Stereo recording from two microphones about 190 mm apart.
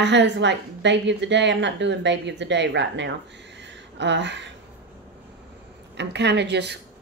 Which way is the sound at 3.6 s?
70° right (ahead or behind).